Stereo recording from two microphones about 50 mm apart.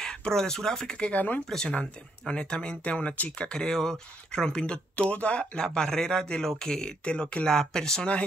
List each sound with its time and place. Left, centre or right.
0.0 s speech: centre
1.1 s speech: left
1.5 s speech: centre
1.8 s speech: left